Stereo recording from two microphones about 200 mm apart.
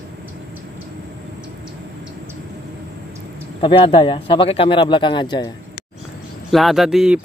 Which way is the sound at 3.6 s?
25° left (ahead or behind).